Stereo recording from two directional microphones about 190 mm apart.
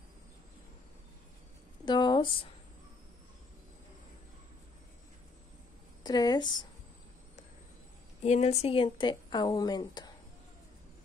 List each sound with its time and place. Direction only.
1.9 s a sound: 25° left (ahead or behind)
6.0 s speech: 20° left (ahead or behind)
8.2 s speech: 35° left (ahead or behind)